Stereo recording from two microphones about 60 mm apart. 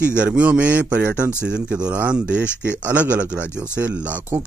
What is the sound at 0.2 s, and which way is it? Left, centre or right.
Speech, centre.